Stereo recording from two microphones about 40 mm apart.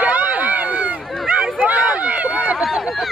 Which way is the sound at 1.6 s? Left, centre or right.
Right.